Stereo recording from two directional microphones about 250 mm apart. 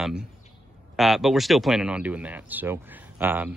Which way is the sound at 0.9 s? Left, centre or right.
Centre.